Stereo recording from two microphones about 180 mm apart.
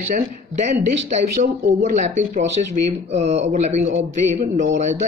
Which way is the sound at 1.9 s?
40° right (ahead or behind).